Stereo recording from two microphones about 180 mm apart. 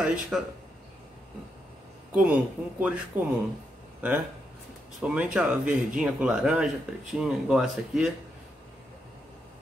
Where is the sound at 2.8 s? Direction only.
10° right (ahead or behind).